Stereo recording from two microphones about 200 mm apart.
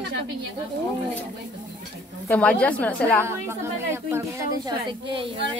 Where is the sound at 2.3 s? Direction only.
5° left (ahead or behind).